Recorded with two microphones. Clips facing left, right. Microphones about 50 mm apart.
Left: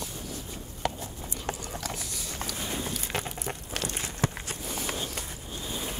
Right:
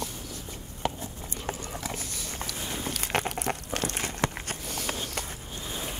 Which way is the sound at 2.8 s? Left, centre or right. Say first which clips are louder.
Right 4 dB; right.